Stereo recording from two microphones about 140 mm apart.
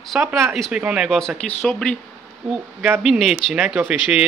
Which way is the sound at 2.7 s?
15° right (ahead or behind).